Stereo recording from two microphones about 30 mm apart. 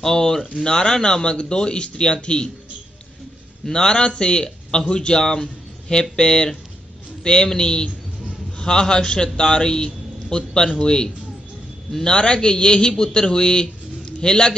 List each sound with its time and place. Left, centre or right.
0.0 s a man's voice: centre
1.2 s speech: left
3.7 s a man's voice: left